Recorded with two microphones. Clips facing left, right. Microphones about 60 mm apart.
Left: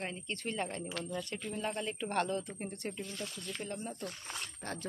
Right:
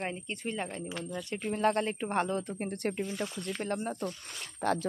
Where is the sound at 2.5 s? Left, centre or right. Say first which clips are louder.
Right 7 dB; right.